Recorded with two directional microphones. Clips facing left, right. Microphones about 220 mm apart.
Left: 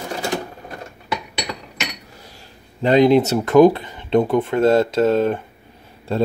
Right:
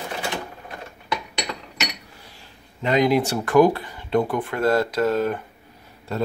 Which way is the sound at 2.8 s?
30° left (ahead or behind).